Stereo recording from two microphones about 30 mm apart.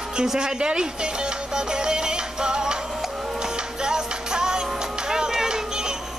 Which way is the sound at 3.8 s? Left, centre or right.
Right.